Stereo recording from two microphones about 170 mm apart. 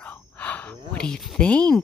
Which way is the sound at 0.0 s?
10° left (ahead or behind).